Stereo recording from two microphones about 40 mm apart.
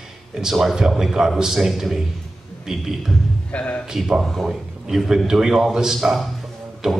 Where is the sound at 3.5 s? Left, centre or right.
Left.